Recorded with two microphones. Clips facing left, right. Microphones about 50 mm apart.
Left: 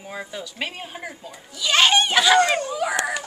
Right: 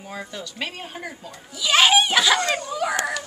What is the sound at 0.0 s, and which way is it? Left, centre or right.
Speech, centre.